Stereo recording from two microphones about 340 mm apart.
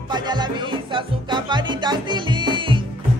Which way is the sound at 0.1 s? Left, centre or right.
Centre.